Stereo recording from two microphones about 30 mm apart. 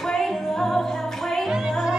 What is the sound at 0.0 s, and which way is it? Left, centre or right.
Music, centre.